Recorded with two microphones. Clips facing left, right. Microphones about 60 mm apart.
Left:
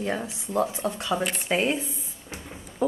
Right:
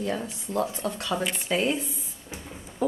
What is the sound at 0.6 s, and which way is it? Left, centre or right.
A woman's voice, centre.